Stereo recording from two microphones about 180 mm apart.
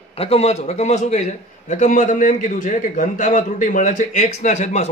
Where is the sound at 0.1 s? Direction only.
35° left (ahead or behind).